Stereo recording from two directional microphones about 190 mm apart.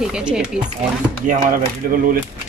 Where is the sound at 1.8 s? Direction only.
50° right (ahead or behind).